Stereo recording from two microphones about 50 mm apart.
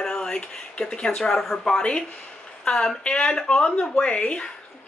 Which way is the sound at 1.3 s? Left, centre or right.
Centre.